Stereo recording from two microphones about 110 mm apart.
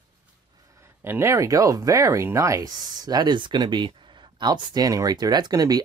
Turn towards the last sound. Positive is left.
turn(degrees=-35)  # may be behind; listen again after turning